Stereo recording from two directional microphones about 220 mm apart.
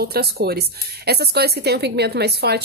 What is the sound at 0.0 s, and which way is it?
A woman's voice, 45° right (ahead or behind).